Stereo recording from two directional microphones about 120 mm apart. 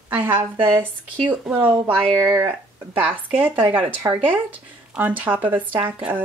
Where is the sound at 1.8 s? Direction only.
20° right (ahead or behind).